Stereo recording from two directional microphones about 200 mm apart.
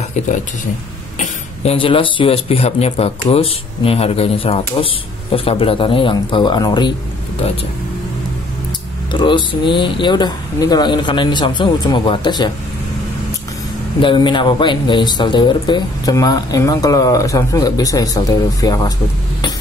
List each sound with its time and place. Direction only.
1.2 s speech: 30° left (ahead or behind)
9.1 s speech: 25° left (ahead or behind)
14.0 s speech: 25° left (ahead or behind)